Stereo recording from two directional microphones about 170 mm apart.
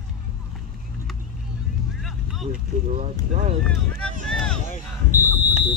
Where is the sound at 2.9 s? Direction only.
45° right (ahead or behind).